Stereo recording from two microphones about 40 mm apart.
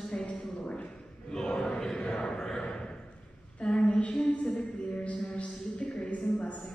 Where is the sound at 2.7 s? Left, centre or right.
Centre.